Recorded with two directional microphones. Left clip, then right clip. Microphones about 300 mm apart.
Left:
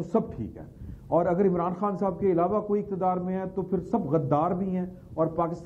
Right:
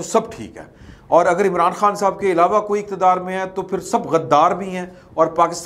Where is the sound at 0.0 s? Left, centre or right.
Centre.